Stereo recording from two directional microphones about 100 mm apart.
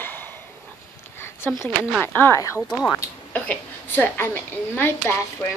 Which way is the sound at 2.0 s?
20° left (ahead or behind).